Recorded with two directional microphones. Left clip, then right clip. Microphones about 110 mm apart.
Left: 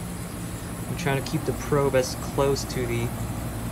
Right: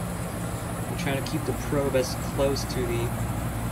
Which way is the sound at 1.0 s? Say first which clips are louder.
Left 3 dB; 30° left (ahead or behind).